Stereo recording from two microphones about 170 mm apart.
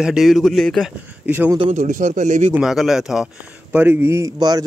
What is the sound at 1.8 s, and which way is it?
Speech, 50° right (ahead or behind).